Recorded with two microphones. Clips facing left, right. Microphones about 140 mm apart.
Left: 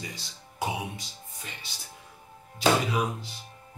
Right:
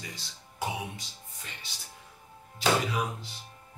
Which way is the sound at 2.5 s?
15° left (ahead or behind).